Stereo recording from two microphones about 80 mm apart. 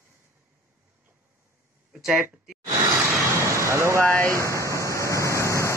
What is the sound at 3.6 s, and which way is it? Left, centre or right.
Speech, right.